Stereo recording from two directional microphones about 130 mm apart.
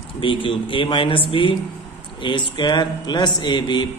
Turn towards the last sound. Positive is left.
turn(degrees=35)  # may be behind; listen again after turning